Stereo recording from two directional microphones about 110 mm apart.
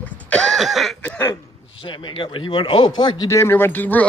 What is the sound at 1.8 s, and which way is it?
Speech, 45° left (ahead or behind).